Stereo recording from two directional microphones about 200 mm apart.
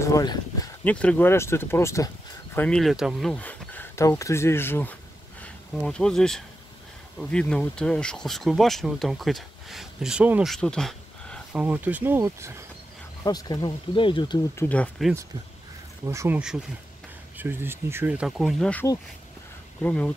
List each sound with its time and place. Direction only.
0.0 s speech: 20° left (ahead or behind)
0.8 s speech: 5° left (ahead or behind); by 12.5 s 15° right (ahead or behind)
13.2 s speech: 20° left (ahead or behind); by 15.1 s 5° left (ahead or behind)
16.1 s speech: 10° right (ahead or behind); by 20.1 s 5° left (ahead or behind)